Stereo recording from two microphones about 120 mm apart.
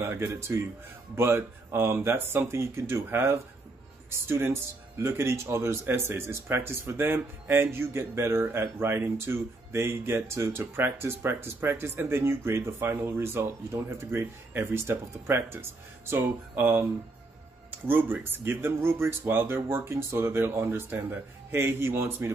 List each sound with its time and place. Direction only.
0.0 s speech: 20° right (ahead or behind)